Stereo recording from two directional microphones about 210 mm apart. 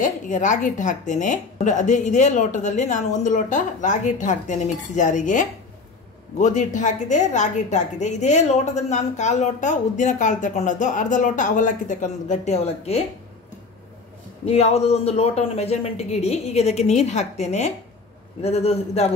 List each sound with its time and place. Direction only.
0.0 s a woman's voice: 35° left (ahead or behind)
14.4 s a woman's voice: 30° left (ahead or behind)